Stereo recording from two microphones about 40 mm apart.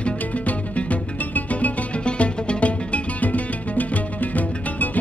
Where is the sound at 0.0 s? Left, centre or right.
Left.